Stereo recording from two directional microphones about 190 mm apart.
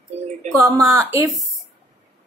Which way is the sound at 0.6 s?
15° right (ahead or behind).